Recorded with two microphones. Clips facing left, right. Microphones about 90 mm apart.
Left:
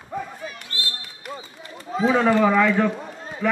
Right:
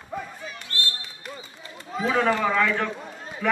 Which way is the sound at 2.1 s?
10° left (ahead or behind).